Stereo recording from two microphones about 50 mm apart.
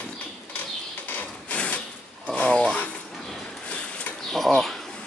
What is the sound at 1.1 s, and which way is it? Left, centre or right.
Printer, left.